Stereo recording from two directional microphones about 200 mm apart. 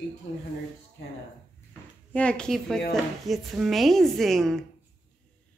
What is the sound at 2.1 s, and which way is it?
A woman's voice, 5° left (ahead or behind).